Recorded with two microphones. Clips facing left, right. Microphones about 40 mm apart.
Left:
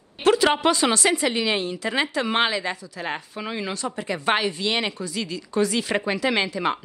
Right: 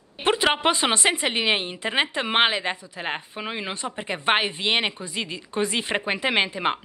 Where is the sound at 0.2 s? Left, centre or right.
Right.